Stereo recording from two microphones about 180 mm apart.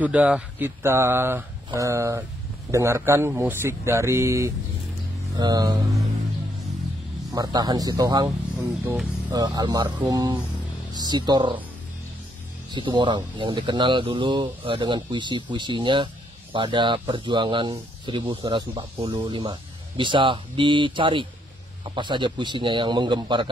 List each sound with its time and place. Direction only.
0.0 s speech: 10° right (ahead or behind)
7.3 s speech: 20° right (ahead or behind)
9.3 s speech: 20° right (ahead or behind)
12.7 s speech: 25° right (ahead or behind)